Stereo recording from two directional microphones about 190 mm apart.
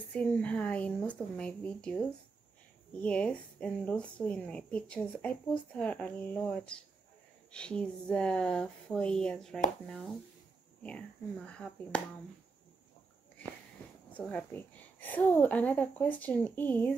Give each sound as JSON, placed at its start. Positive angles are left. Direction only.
{"t": 0.1, "sound": "speech", "side_deg": 5}
{"t": 10.8, "sound": "speech", "side_deg": 5}
{"t": 14.1, "sound": "speech", "side_deg": 10}